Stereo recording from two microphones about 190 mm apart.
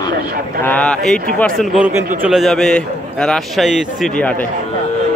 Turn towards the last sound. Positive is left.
turn(degrees=5)  # may be behind; listen again after turning